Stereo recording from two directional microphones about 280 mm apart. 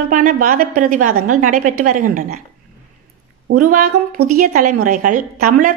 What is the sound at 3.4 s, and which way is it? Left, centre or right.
A woman's voice, right.